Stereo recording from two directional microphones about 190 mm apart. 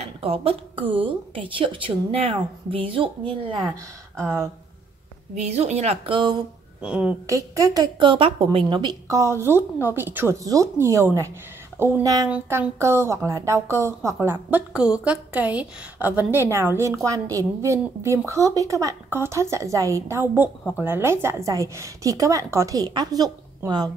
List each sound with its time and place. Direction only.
0.2 s a woman's voice: 30° right (ahead or behind)
4.2 s a woman's voice: 10° right (ahead or behind)
5.3 s a woman's voice: 35° right (ahead or behind)
6.8 s a woman's voice: 5° right (ahead or behind)
7.2 s a woman's voice: 20° right (ahead or behind)